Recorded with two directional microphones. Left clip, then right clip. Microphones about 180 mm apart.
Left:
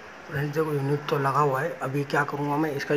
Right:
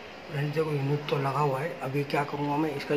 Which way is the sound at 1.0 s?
25° left (ahead or behind).